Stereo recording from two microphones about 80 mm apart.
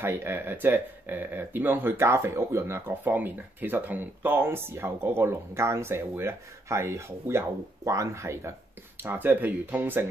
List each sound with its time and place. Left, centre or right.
0.0 s speech: right
2.9 s speech: right
9.0 s speech: right